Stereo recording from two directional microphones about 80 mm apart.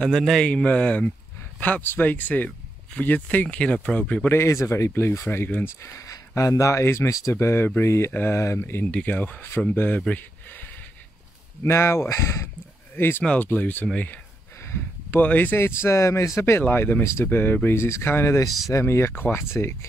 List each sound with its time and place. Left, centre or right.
0.1 s speech: centre
0.5 s speech: centre
4.3 s speech: left
8.8 s speech: centre
11.6 s speech: left
14.6 s a sound: left
15.1 s speech: left